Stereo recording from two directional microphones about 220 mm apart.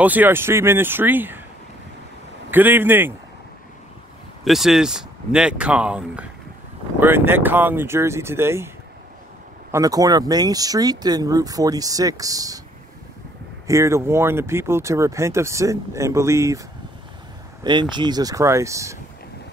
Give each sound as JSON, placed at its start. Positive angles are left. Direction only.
{"t": 0.0, "sound": "speech", "side_deg": -10}
{"t": 2.5, "sound": "speech", "side_deg": -10}
{"t": 4.5, "sound": "speech", "side_deg": 0}
{"t": 9.7, "sound": "speech", "side_deg": -15}
{"t": 13.7, "sound": "speech", "side_deg": -15}
{"t": 17.6, "sound": "speech", "side_deg": -20}